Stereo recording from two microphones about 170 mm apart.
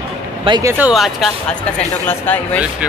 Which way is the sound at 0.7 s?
5° right (ahead or behind).